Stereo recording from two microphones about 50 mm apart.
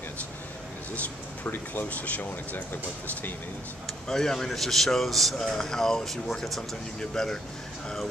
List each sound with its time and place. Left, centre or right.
1.4 s speech: left
3.8 s speech: centre